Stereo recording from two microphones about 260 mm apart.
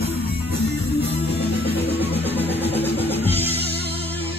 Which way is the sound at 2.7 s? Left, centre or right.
Centre.